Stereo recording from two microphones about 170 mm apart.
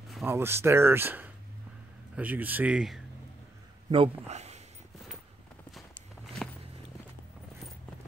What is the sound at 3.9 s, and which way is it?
Speech, 35° right (ahead or behind).